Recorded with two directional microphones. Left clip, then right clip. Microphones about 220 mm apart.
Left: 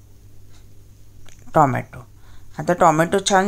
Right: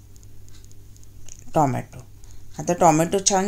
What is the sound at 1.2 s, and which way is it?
A woman's voice, 5° left (ahead or behind).